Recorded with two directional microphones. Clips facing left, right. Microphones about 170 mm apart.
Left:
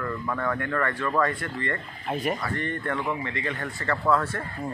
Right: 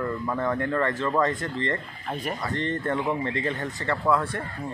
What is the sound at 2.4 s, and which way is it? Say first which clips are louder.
Speech: right 2 dB; 20° right (ahead or behind).